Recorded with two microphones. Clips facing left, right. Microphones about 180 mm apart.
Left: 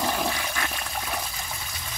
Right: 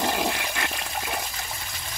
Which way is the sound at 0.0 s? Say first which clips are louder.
Right 1 dB; 10° right (ahead or behind).